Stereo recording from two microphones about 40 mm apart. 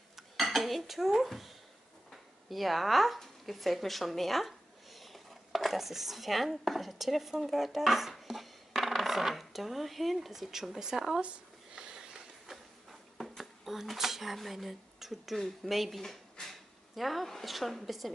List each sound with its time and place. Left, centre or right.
0.1 s dishes: centre
2.5 s a woman's voice: centre
11.7 s sniff: centre
13.4 s a woman's voice: centre
16.0 s a sound: centre
17.0 s a woman's voice: centre